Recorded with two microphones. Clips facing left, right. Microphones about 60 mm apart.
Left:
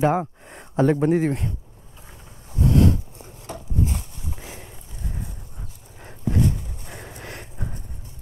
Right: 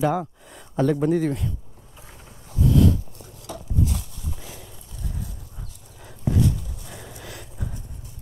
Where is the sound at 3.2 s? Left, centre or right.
Left.